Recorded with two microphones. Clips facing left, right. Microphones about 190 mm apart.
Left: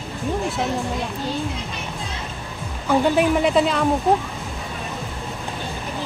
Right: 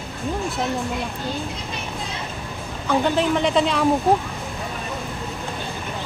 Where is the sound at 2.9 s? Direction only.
10° left (ahead or behind).